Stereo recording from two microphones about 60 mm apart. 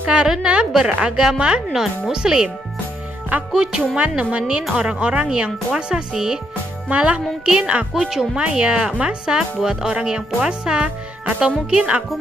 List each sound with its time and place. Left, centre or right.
0.0 s a woman's voice: centre
3.5 s speech: centre
8.4 s speech: centre